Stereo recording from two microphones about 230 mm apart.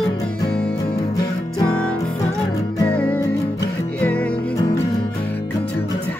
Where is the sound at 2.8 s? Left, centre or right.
Centre.